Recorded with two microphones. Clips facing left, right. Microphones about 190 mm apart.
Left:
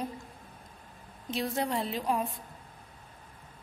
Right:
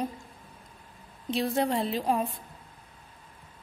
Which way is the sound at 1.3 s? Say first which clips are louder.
Right 4 dB; 30° right (ahead or behind).